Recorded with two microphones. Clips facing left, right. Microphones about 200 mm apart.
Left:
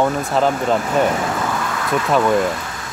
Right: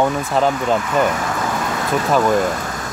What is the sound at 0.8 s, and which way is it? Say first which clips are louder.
Speech: even; 40° left (ahead or behind).